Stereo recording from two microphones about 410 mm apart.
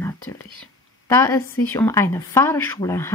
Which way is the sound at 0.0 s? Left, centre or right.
Centre.